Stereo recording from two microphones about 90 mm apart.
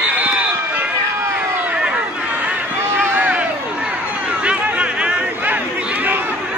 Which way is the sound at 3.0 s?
15° right (ahead or behind).